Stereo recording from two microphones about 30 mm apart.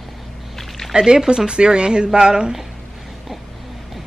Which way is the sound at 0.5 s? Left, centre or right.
Centre.